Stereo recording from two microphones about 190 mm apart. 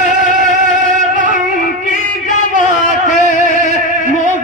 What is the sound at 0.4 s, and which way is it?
Music, 40° right (ahead or behind).